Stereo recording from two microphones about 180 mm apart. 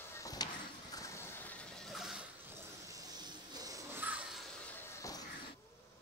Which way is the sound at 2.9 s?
20° right (ahead or behind).